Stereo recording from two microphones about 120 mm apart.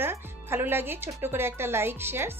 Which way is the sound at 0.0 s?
20° right (ahead or behind).